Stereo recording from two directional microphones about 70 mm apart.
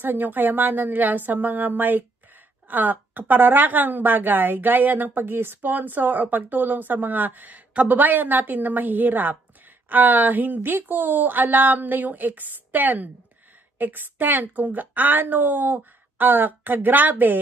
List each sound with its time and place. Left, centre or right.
0.0 s a woman's voice: right